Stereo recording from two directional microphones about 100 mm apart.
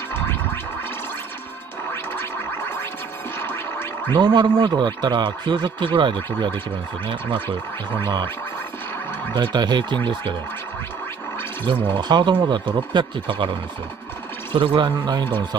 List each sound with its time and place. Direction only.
3.3 s gargling: 20° left (ahead or behind)
4.1 s speech: 45° right (ahead or behind); by 7.4 s 65° right (ahead or behind)
9.3 s speech: 50° right (ahead or behind)
11.6 s speech: 50° right (ahead or behind)